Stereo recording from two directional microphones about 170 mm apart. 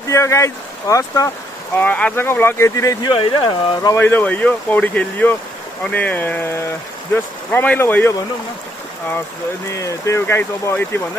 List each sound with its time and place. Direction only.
0.1 s speech: 15° left (ahead or behind)
1.8 s speech: 10° left (ahead or behind); by 4.0 s 25° left (ahead or behind)
4.0 s speech: 10° left (ahead or behind)
9.7 s speech: 20° left (ahead or behind)